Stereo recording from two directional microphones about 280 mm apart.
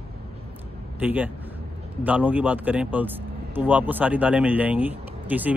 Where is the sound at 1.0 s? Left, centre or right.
Centre.